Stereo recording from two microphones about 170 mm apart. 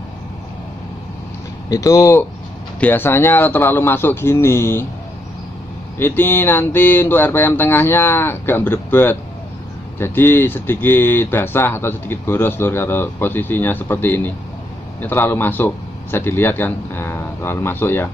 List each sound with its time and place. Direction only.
1.7 s speech: 20° left (ahead or behind)
5.9 s speech: 15° left (ahead or behind)